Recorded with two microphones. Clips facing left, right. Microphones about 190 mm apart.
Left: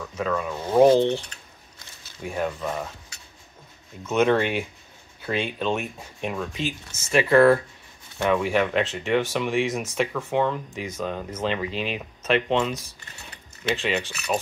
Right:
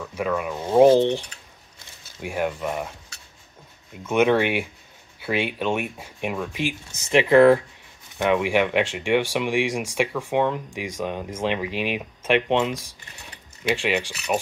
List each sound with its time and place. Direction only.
0.0 s speech: 10° right (ahead or behind)
2.2 s speech: 10° right (ahead or behind)
4.0 s speech: 10° right (ahead or behind)